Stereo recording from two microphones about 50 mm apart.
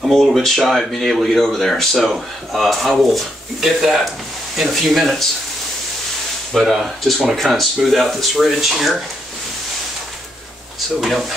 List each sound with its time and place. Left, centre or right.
0.0 s speech: centre
6.5 s speech: centre
11.0 s speech: centre